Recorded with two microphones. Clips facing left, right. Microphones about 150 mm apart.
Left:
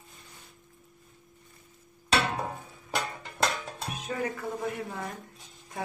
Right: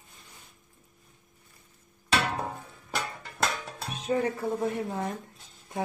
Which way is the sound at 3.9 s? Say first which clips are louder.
Right 6 dB; 25° right (ahead or behind).